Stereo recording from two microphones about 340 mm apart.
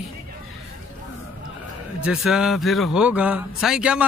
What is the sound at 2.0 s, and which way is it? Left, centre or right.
Speech, centre.